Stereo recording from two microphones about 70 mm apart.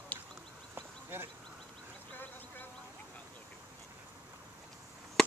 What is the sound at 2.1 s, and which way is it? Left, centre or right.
Insect, left.